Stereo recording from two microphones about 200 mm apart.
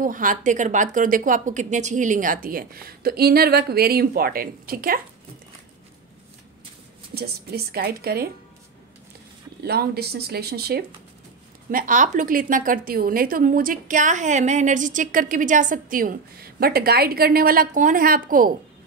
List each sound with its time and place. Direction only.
0.0 s a woman's voice: 40° right (ahead or behind)
7.2 s a woman's voice: 50° right (ahead or behind)
9.6 s a woman's voice: 50° right (ahead or behind)